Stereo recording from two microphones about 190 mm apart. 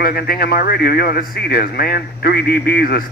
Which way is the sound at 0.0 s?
55° left (ahead or behind).